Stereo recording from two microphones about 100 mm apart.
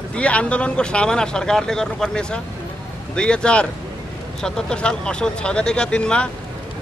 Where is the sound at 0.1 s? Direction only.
10° left (ahead or behind).